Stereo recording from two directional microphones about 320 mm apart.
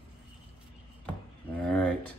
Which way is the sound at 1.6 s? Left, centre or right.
Centre.